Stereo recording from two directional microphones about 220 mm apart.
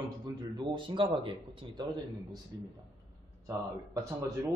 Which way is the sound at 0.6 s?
20° right (ahead or behind).